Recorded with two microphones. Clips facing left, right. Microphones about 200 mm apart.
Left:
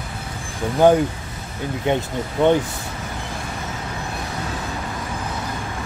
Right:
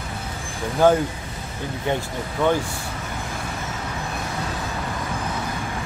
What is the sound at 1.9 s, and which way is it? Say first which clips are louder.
Speech: left 4 dB; 20° left (ahead or behind).